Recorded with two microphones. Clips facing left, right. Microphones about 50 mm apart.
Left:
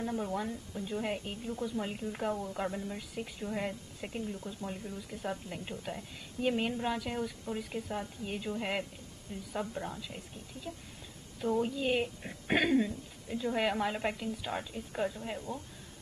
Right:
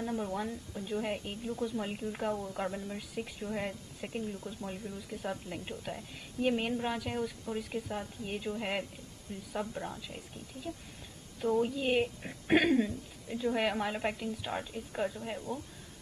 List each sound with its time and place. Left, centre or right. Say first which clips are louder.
0.1 s speech: even; centre
4.4 s speech: even; centre
5.1 s speech: even; centre
10.7 s speech: right 2 dB; left
11.4 s speech: right 1 dB; centre